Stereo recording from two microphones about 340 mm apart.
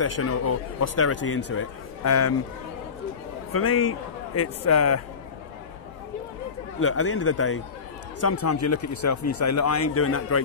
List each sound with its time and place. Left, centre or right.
0.0 s speech: left
3.5 s speech: left
6.8 s speech: left
8.2 s speech: left